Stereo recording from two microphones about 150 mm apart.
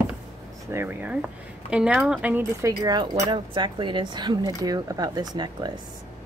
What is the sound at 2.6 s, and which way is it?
Speech, 25° right (ahead or behind).